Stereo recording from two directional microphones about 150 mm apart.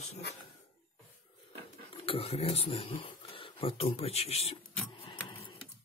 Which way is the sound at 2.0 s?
40° left (ahead or behind).